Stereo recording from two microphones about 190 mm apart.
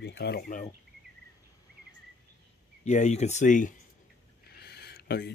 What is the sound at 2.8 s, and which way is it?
Speech, 35° left (ahead or behind).